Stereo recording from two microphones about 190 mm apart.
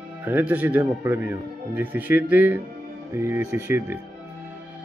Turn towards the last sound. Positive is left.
turn(degrees=-15)  # may be behind; listen again after turning